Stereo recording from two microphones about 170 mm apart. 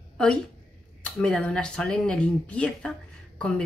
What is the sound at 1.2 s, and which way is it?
Speech, 5° left (ahead or behind).